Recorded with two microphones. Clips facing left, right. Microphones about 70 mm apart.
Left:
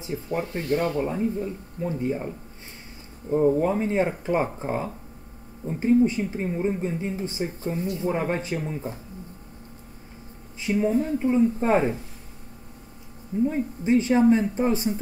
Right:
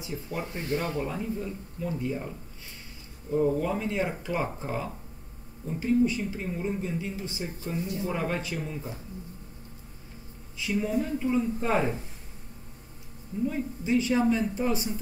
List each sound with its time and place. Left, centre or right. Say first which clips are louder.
0.0 s speech: left 6 dB; left
10.6 s speech: left 5 dB; left
13.5 s speech: left 3 dB; left